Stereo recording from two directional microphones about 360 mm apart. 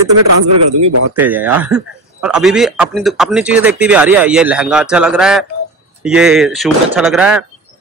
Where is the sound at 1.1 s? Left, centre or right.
Centre.